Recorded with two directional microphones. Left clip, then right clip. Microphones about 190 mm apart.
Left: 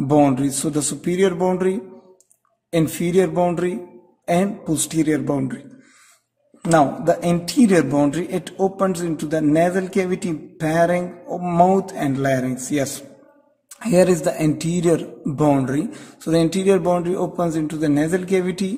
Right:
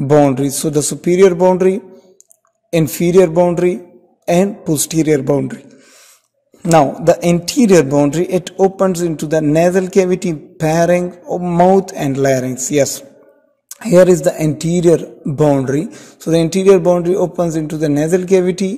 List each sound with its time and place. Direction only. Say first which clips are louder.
0.1 s a man's voice: right 6 dB; 25° right (ahead or behind)
6.7 s a man's voice: right 6 dB; 35° right (ahead or behind)